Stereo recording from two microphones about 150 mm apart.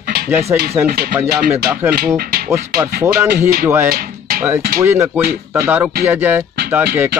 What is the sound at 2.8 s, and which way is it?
Music, 15° right (ahead or behind).